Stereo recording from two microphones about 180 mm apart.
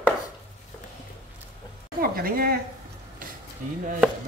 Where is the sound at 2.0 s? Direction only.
55° right (ahead or behind).